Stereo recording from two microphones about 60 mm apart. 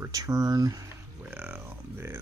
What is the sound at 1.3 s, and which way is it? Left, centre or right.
Speech, right.